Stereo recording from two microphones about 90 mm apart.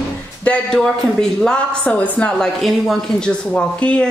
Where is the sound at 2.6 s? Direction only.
Centre (ahead or behind).